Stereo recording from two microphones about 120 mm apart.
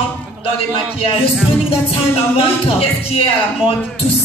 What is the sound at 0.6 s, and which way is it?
Music, 50° left (ahead or behind).